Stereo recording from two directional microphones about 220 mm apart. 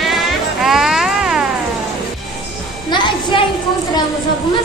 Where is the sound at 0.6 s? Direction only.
Centre (ahead or behind).